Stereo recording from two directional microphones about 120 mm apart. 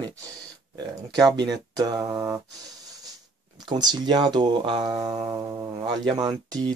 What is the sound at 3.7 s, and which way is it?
Speech, 35° right (ahead or behind).